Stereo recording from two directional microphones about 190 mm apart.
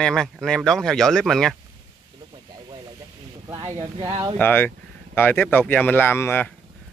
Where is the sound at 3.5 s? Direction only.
25° right (ahead or behind).